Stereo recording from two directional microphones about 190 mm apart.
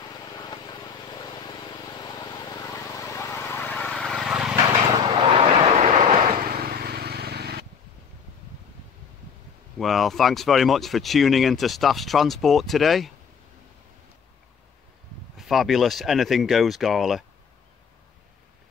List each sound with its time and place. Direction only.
0.1 s vehicle: 20° left (ahead or behind); by 4.6 s 5° right (ahead or behind)
4.9 s vehicle: 25° right (ahead or behind)
6.5 s vehicle: 50° right (ahead or behind)
9.8 s speech: centre (ahead or behind)
15.3 s speech: centre (ahead or behind)